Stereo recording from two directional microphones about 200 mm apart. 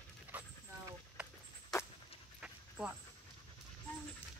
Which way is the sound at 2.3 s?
5° right (ahead or behind).